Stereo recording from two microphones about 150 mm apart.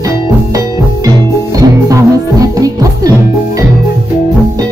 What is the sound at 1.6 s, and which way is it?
Music, 20° right (ahead or behind).